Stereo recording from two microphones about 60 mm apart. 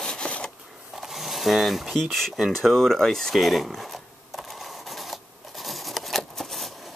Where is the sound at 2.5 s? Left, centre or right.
Centre.